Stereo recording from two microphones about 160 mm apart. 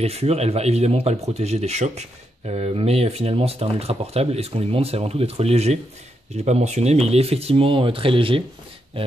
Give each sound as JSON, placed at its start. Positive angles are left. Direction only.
{"t": 0.0, "sound": "speech", "side_deg": -40}